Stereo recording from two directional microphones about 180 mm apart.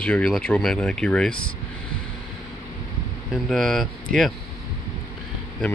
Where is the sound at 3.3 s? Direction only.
Centre (ahead or behind).